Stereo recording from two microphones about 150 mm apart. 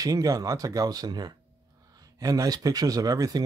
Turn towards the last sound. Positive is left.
turn(degrees=-25)  # may be behind; listen again after turning